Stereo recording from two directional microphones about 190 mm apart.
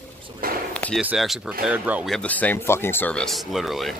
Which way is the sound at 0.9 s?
5° right (ahead or behind).